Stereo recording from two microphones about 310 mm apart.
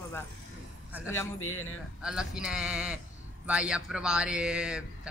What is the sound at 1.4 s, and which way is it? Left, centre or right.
Speech, left.